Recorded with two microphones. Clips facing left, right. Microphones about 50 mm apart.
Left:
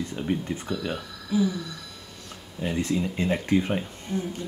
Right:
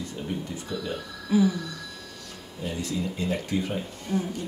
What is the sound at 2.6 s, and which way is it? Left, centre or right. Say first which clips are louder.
Speech: left 4 dB; left.